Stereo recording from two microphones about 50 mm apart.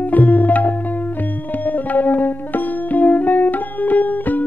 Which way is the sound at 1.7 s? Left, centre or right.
Left.